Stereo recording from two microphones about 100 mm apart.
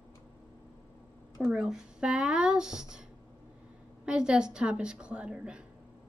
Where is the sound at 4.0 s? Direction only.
10° right (ahead or behind).